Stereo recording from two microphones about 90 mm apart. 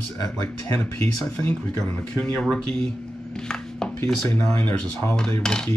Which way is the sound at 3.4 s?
10° left (ahead or behind).